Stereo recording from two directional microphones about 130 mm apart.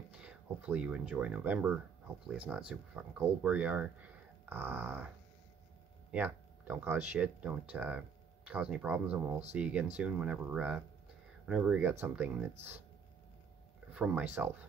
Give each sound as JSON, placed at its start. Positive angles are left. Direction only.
{"t": 0.2, "sound": "speech", "side_deg": -10}
{"t": 6.1, "sound": "speech", "side_deg": -15}
{"t": 13.9, "sound": "speech", "side_deg": -10}